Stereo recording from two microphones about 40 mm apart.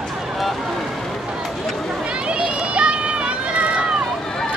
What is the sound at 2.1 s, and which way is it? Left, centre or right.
Run, right.